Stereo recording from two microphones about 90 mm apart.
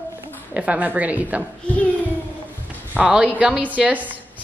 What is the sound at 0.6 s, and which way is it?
Speech, 15° right (ahead or behind).